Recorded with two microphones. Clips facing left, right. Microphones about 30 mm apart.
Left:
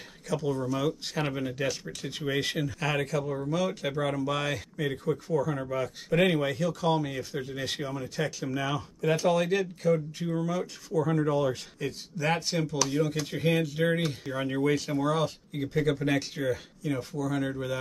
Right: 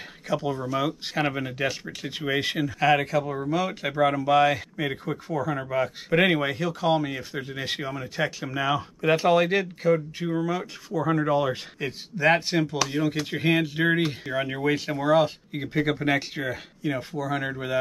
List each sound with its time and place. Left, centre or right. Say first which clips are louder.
0.3 s speech: right 2 dB; right